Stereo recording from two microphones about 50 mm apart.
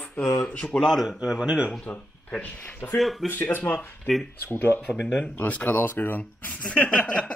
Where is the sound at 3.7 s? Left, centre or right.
Left.